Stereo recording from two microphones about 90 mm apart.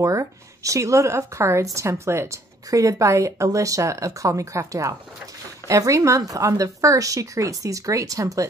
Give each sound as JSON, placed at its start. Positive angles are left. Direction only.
{"t": 0.0, "sound": "speech", "side_deg": -35}